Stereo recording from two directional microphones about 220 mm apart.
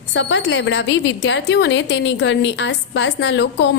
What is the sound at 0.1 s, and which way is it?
A woman's voice, 55° left (ahead or behind).